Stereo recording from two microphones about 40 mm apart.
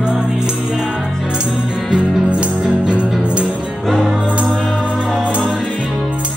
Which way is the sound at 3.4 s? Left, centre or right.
Centre.